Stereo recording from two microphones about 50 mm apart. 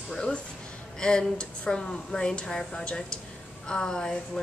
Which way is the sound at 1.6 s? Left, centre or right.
Centre.